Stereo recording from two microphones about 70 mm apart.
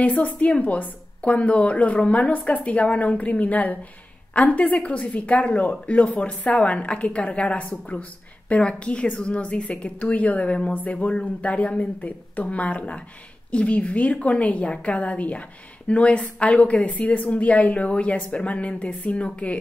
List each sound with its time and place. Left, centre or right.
0.0 s a woman's voice: centre